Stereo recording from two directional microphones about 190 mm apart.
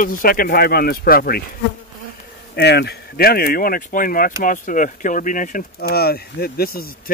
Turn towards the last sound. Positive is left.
turn(degrees=50)  # may be behind; listen again after turning